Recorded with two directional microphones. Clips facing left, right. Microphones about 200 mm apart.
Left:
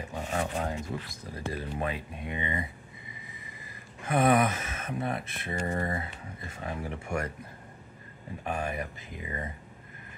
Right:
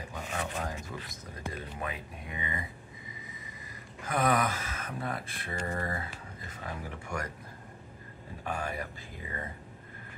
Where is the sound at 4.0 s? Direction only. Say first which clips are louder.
Left 4 dB; 25° left (ahead or behind).